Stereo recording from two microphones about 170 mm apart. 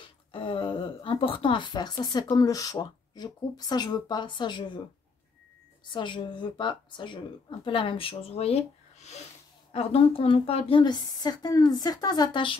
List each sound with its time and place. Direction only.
0.3 s a sound: 30° left (ahead or behind)
2.2 s a woman's voice: 20° left (ahead or behind)
5.9 s a woman's voice: 30° left (ahead or behind)